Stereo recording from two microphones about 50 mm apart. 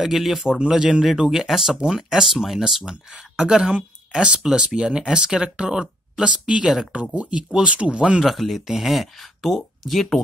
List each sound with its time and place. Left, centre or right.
0.0 s speech: centre; by 8.2 s right
8.2 s speech: centre